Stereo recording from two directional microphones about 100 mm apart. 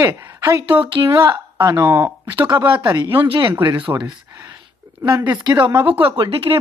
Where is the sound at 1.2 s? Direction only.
30° right (ahead or behind).